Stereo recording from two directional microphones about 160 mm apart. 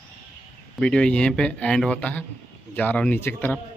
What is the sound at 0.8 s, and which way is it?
Speech, 5° left (ahead or behind).